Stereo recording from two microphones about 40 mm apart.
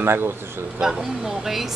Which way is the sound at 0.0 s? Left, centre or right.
Right.